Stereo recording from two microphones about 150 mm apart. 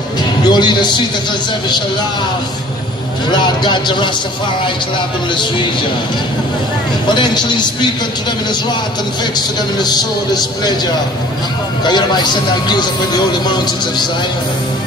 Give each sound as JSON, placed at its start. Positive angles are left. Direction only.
{"t": 0.4, "sound": "speech", "side_deg": 30}
{"t": 3.3, "sound": "speech", "side_deg": 30}
{"t": 7.1, "sound": "speech", "side_deg": 30}
{"t": 9.8, "sound": "speech", "side_deg": 25}
{"t": 11.8, "sound": "speech", "side_deg": 30}